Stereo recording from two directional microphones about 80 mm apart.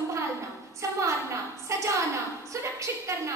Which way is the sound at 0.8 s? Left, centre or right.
Right.